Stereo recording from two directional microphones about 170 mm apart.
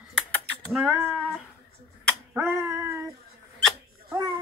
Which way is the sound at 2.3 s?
15° right (ahead or behind).